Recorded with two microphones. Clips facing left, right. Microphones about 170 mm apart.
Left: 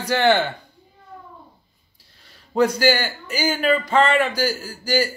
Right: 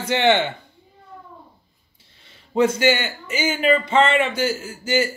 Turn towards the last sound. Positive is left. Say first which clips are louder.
# even
turn(degrees=-25)  # may be behind; listen again after turning